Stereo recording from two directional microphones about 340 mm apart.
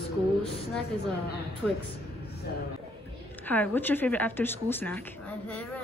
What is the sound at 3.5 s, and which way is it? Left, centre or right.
Speech, centre.